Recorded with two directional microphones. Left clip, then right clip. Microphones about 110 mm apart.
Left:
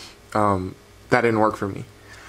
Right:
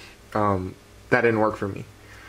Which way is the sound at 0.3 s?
25° left (ahead or behind).